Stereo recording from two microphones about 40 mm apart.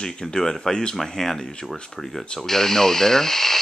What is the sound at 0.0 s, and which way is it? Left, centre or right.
Speech, centre.